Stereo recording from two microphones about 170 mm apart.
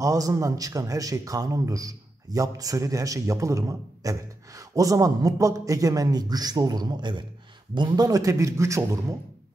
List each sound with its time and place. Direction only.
0.0 s a man's voice: 20° right (ahead or behind)